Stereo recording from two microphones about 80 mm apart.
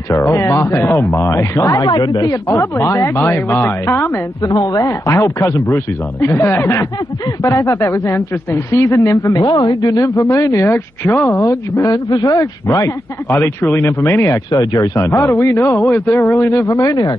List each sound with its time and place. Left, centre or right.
0.2 s speech: left
1.8 s a woman's voice: left
2.4 s speech: left
3.2 s speech: left
4.4 s a woman's voice: left
5.0 s speech: left
9.3 s a woman's voice: left
9.8 s speech: left
11.9 s a woman's voice: left
13.3 s speech: left
14.5 s a woman's voice: left
15.0 s speech: left